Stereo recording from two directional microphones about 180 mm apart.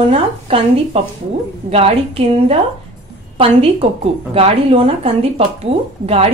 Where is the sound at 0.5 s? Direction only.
30° right (ahead or behind).